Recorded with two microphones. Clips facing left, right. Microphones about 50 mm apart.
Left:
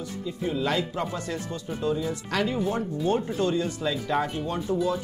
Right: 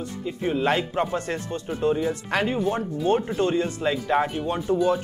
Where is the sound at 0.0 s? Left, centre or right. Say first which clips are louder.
Right 3 dB; right.